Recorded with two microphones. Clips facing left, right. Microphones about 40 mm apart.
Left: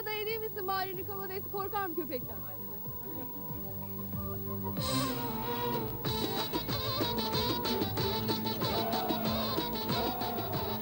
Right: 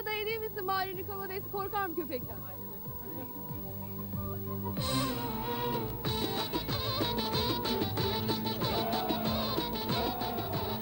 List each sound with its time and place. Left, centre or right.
0.0 s speech: centre
4.3 s music: centre